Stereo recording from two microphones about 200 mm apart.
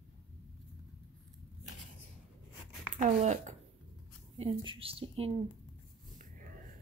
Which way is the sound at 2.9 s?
35° right (ahead or behind).